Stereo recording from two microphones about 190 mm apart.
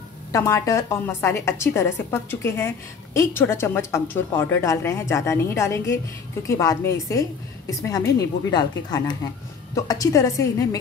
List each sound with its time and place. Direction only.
0.3 s a woman's voice: 15° left (ahead or behind)